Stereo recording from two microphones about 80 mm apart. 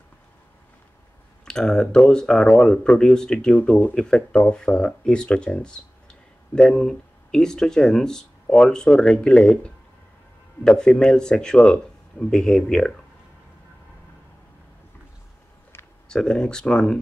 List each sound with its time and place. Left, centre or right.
1.4 s speech: centre
3.5 s speech: left
3.9 s speech: centre
16.1 s speech: centre